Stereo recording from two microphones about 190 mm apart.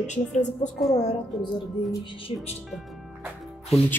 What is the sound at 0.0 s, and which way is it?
Speech, 40° left (ahead or behind).